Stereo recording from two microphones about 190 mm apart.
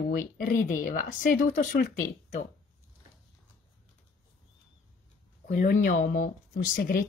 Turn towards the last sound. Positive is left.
turn(degrees=45)  # may be behind; listen again after turning